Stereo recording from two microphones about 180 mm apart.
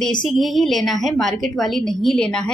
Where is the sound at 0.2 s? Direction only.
Centre (ahead or behind).